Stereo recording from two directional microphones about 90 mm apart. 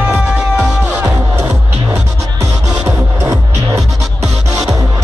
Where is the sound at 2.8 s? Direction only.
30° right (ahead or behind).